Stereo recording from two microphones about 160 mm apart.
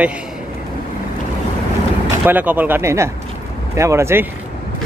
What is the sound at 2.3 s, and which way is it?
Speech, 10° right (ahead or behind).